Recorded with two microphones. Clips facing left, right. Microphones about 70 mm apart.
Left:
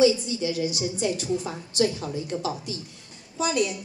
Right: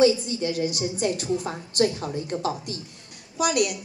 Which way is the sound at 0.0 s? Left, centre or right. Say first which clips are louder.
Right 1 dB; right.